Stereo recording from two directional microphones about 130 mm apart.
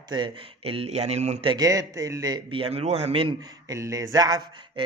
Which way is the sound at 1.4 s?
30° right (ahead or behind).